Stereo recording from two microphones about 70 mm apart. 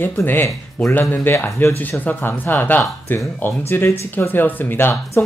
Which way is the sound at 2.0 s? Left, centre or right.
Left.